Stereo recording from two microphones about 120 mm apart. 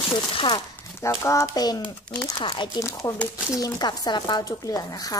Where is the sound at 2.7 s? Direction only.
30° left (ahead or behind).